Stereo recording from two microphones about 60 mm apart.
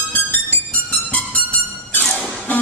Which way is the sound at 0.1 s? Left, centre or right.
Left.